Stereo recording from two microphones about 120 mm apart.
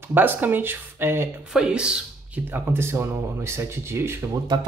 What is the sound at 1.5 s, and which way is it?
A man's voice, 5° right (ahead or behind).